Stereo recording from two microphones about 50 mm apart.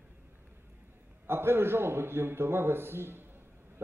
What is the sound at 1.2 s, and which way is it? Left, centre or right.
A man's voice, right.